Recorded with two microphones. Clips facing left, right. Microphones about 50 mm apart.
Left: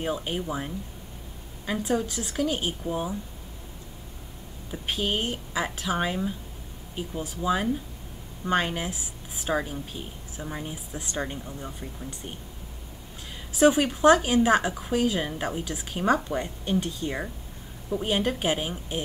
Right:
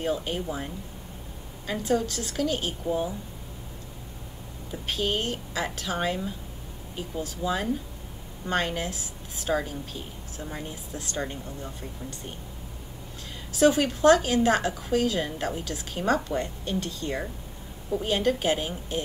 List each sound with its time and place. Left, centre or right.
0.0 s a woman's voice: centre
4.6 s a woman's voice: centre
13.5 s a woman's voice: centre